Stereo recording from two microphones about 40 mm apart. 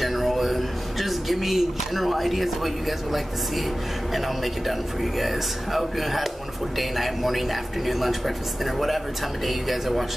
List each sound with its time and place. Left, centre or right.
0.0 s speech: centre
4.6 s speech: centre